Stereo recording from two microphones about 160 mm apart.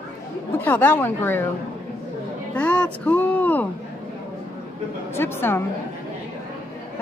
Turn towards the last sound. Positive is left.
turn(degrees=15)  # may be behind; listen again after turning